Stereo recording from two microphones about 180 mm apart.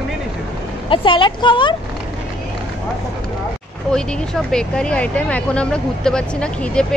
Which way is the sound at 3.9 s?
5° left (ahead or behind).